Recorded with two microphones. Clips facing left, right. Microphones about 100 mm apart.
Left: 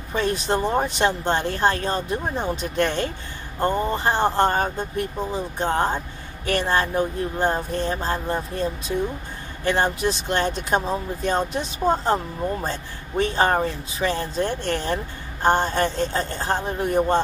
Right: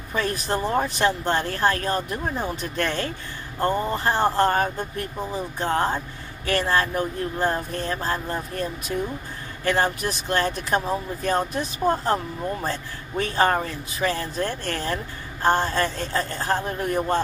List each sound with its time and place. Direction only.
0.1 s speech: 25° left (ahead or behind)
13.2 s speech: 20° left (ahead or behind)